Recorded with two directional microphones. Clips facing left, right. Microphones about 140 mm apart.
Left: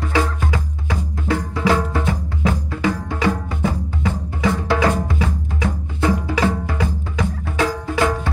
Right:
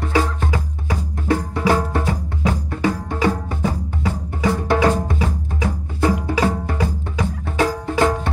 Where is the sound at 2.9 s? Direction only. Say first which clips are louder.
Right 1 dB; 20° right (ahead or behind).